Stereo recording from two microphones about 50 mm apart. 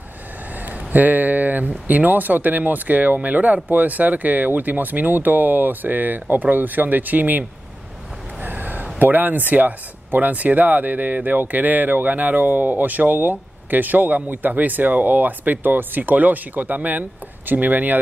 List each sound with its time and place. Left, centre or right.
0.6 s speech: right
8.4 s a sound: right
9.0 s speech: right